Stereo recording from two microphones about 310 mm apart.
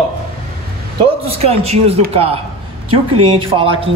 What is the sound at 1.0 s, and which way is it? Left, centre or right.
Speech, centre.